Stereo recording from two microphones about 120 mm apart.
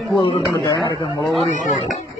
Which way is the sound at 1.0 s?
30° left (ahead or behind).